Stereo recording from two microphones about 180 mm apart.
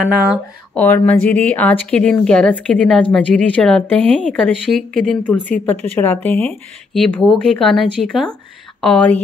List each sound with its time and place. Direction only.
0.0 s speech: 5° right (ahead or behind)
0.7 s speech: 10° left (ahead or behind)